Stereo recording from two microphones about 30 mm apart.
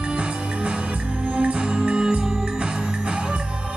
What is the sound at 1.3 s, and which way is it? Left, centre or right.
Music, right.